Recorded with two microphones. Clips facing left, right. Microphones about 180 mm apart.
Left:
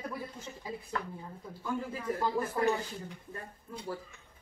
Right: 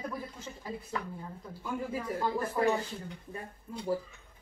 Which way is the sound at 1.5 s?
10° right (ahead or behind).